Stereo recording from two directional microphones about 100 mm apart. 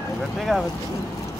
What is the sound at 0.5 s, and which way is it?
Speech, 5° left (ahead or behind).